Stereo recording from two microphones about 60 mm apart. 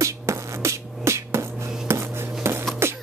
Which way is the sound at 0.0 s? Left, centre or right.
Right.